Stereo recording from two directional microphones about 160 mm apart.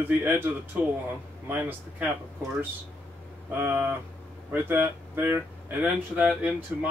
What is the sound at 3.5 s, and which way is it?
Speech, 15° right (ahead or behind).